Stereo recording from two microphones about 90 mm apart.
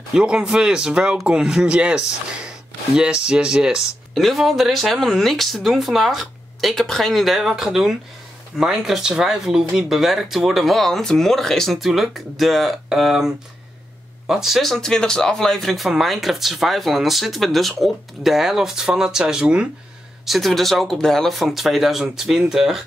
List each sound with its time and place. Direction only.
0.1 s speech: 10° right (ahead or behind)
20.2 s speech: centre (ahead or behind)